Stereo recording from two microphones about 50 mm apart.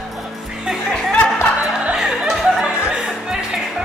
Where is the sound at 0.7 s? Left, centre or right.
Centre.